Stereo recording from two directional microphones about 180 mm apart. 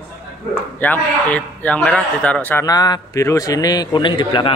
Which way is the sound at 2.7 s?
20° left (ahead or behind).